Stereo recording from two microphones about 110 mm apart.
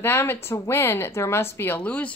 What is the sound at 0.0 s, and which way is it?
A woman's voice, 20° left (ahead or behind).